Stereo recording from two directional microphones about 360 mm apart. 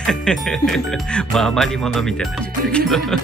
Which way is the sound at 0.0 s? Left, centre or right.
Centre.